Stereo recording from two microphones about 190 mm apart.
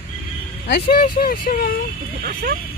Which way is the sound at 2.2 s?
50° right (ahead or behind).